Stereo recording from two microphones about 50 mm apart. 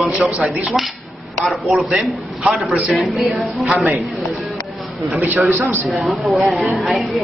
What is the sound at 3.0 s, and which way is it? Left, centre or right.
Speech, centre.